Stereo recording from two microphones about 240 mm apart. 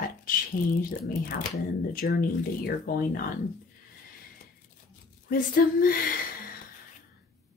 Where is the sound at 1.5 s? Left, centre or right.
Left.